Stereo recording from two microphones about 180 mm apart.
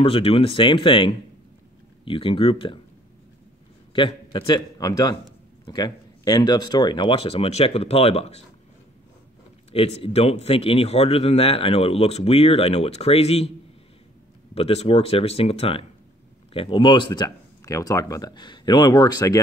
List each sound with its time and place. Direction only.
0.0 s speech: 30° left (ahead or behind)
3.9 s a man's voice: 25° left (ahead or behind)
9.7 s a man's voice: 35° left (ahead or behind)
14.5 s a man's voice: 35° left (ahead or behind)